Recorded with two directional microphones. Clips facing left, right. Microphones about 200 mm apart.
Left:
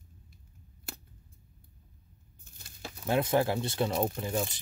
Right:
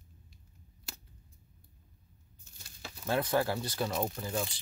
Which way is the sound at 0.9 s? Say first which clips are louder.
Left 5 dB; 55° left (ahead or behind).